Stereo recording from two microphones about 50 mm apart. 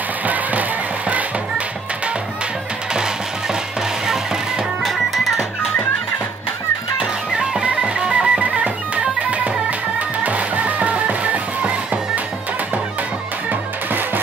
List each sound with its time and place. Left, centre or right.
0.3 s music: right
4.8 s music: centre
7.3 s music: centre
13.5 s music: right